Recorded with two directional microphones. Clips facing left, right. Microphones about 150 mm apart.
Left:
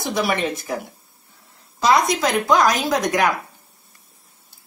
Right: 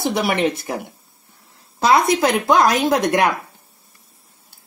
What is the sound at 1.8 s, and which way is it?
A woman's voice, 60° right (ahead or behind).